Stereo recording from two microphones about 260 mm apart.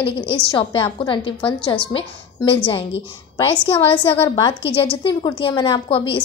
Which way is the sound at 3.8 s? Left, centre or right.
Centre.